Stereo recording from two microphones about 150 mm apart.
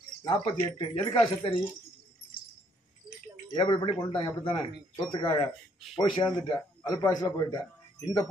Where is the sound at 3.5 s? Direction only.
30° left (ahead or behind).